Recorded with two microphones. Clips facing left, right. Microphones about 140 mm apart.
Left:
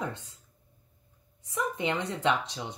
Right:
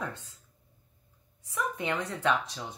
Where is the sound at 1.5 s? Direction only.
25° left (ahead or behind).